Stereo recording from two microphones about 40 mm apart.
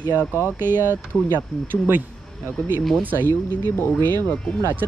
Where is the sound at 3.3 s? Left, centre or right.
Left.